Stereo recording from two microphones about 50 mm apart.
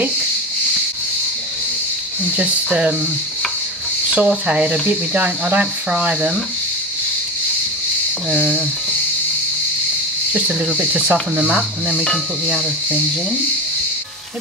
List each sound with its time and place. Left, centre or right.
2.3 s speech: right
4.1 s speech: right
8.3 s speech: centre
10.8 s speech: right